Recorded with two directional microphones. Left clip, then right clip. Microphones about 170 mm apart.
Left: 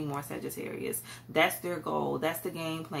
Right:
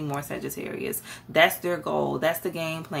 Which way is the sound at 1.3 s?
30° right (ahead or behind).